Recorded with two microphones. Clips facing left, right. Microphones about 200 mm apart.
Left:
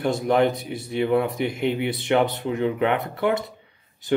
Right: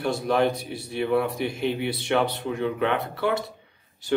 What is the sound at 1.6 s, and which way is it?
Speech, 60° left (ahead or behind).